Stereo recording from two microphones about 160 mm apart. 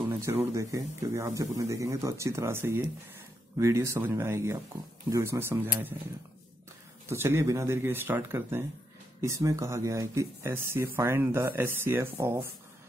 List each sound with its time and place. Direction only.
0.1 s speech: 15° right (ahead or behind)
7.1 s speech: 15° right (ahead or behind)